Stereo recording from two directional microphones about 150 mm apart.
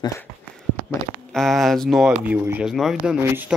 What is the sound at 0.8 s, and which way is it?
Speech, centre (ahead or behind).